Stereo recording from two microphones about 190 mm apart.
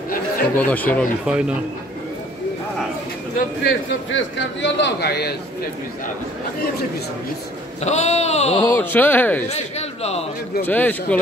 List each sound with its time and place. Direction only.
0.6 s speech: 10° left (ahead or behind)
1.2 s speech: 5° right (ahead or behind)
3.3 s a man's voice: 70° left (ahead or behind)
7.8 s speech: 35° left (ahead or behind)
8.6 s speech: 10° left (ahead or behind)
9.5 s a man's voice: 35° left (ahead or behind)
10.6 s speech: 10° left (ahead or behind)